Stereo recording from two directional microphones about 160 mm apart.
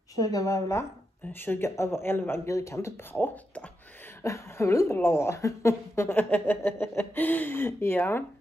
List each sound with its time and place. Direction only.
0.1 s a woman's voice: 20° left (ahead or behind)